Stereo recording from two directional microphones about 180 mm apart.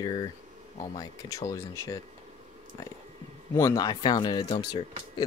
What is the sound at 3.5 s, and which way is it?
Speech, 20° left (ahead or behind).